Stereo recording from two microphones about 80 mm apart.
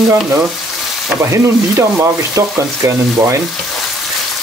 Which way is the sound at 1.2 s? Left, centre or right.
Right.